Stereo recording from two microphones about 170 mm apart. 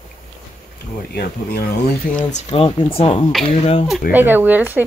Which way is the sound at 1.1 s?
70° left (ahead or behind).